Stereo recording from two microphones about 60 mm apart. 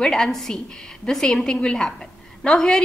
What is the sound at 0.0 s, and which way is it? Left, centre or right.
A woman's voice, centre.